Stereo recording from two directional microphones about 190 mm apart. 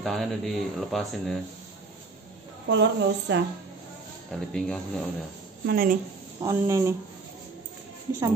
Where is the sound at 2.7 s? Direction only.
65° right (ahead or behind).